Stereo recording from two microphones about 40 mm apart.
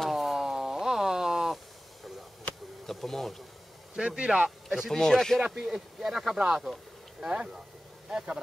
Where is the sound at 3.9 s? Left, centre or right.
Right.